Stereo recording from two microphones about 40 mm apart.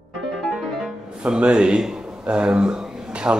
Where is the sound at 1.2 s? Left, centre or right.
Right.